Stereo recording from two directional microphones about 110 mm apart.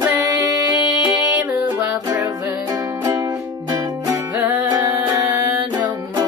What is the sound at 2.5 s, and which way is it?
Music, 25° right (ahead or behind).